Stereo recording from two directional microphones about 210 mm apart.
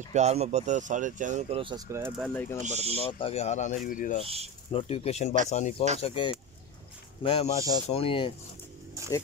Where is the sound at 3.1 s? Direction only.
25° left (ahead or behind).